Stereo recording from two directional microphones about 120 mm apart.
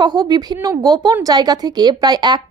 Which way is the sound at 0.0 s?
35° right (ahead or behind).